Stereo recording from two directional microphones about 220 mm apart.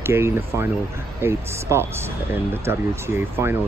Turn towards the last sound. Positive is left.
turn(degrees=-10)  # may be behind; listen again after turning